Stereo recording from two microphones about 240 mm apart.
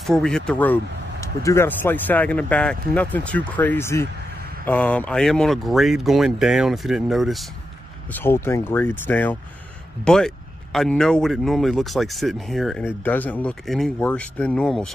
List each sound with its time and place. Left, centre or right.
0.0 s speech: centre